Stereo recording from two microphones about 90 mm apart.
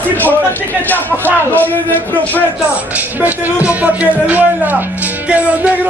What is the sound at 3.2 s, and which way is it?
Speech, 15° right (ahead or behind).